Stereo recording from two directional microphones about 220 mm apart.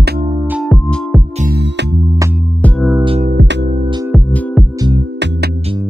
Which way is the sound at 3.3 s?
50° right (ahead or behind).